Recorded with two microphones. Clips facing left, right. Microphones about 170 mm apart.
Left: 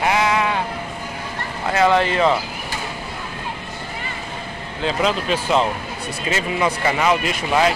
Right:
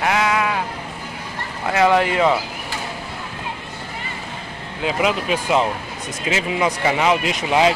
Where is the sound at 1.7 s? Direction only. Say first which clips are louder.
Even; 15° right (ahead or behind).